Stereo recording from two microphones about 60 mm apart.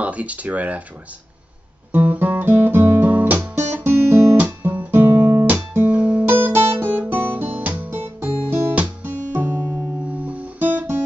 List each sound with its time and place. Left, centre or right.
0.0 s speech: right
1.9 s guitar: right
3.1 s guitar: right
3.5 s guitar: right
5.1 s guitar: right
5.5 s music: right
6.2 s music: right
6.7 s guitar: right
8.7 s music: right
10.2 s guitar: right
10.7 s guitar: right